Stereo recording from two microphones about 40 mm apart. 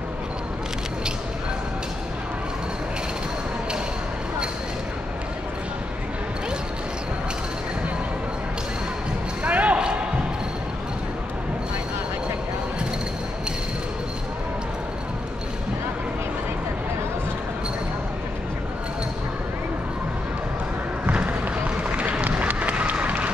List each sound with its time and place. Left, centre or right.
9.4 s basketball bounce: right
21.1 s a sound: right
22.3 s run: right